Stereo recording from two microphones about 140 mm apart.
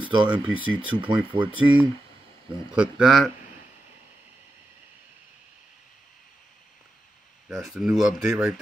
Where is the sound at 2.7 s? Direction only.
5° right (ahead or behind).